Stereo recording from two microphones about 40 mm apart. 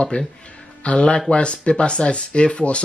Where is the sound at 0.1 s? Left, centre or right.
Left.